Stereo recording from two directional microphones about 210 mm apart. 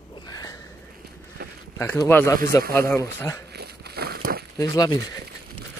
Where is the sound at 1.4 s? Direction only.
45° right (ahead or behind).